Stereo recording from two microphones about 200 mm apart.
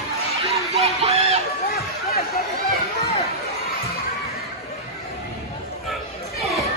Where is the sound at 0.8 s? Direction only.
30° right (ahead or behind).